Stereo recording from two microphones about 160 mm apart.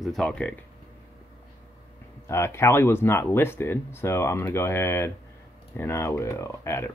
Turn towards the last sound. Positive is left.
turn(degrees=15)  # may be behind; listen again after turning